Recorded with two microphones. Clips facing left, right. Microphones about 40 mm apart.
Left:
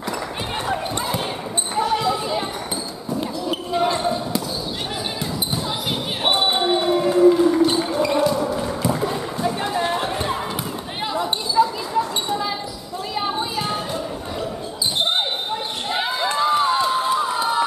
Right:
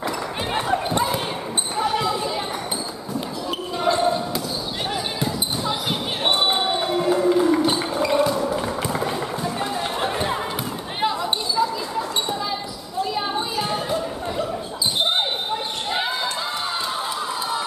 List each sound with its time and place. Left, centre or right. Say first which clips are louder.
0.7 s basketball bounce: right 3 dB; centre
3.2 s basketball bounce: left 2 dB; centre
5.2 s basketball bounce: right 1 dB; centre
6.4 s music: left 2 dB; centre
9.9 s run: even; centre
13.1 s music: left 4 dB; centre
15.0 s basketball bounce: even; centre
16.3 s crowd: left 8 dB; centre